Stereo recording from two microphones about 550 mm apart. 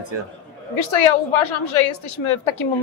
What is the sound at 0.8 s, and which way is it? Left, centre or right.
A woman's voice, left.